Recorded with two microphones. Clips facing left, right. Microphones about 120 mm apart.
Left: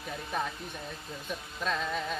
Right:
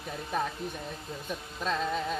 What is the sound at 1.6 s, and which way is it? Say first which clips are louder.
Music: right 2 dB; 35° right (ahead or behind).